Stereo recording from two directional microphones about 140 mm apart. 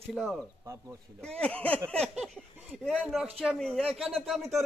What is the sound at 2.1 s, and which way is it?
Speech, 5° right (ahead or behind).